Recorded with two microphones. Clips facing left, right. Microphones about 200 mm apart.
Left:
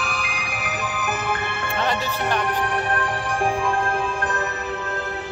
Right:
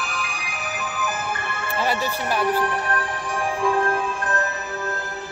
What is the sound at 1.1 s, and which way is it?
Music, 60° left (ahead or behind).